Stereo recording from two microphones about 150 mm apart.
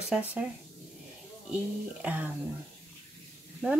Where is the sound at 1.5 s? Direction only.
10° right (ahead or behind).